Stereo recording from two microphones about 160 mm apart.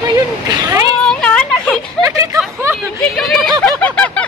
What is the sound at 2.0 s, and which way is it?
Speech, 20° right (ahead or behind).